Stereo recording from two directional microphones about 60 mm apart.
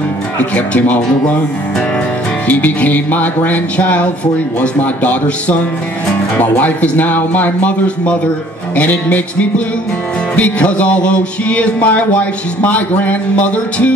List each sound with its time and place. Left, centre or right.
0.4 s music: left
2.4 s music: left